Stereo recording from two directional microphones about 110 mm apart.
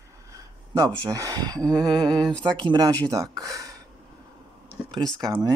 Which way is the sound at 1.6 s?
5° left (ahead or behind).